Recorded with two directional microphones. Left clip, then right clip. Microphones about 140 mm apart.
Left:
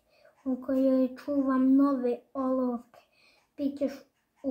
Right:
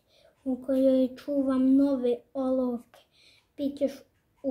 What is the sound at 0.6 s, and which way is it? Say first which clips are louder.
Speech: right 3 dB; 20° right (ahead or behind).